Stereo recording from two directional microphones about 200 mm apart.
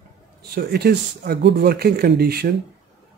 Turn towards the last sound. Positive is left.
turn(degrees=-50)  # may be behind; listen again after turning